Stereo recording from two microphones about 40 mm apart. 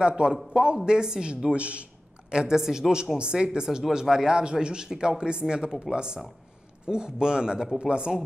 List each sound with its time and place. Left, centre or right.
0.0 s speech: centre
2.3 s a woman's voice: centre